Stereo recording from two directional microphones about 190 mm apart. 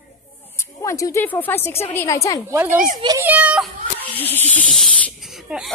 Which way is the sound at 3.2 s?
5° right (ahead or behind).